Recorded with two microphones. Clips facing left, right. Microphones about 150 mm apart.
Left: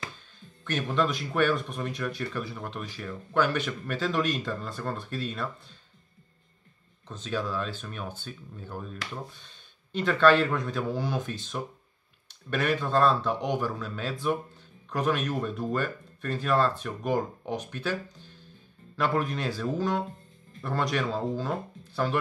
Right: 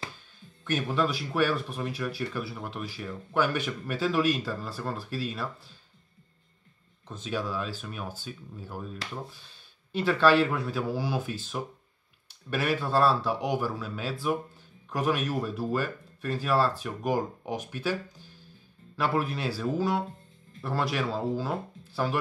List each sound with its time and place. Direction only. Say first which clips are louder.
0.7 s speech: even; 10° right (ahead or behind)
7.1 s speech: left 1 dB; 10° right (ahead or behind)